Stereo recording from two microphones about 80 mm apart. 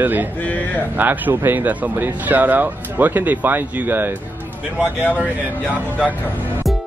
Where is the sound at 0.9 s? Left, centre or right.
Right.